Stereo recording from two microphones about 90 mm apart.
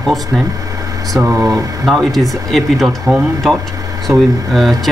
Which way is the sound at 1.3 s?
30° right (ahead or behind).